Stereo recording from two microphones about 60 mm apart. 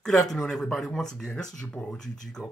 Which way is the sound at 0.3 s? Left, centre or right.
Centre.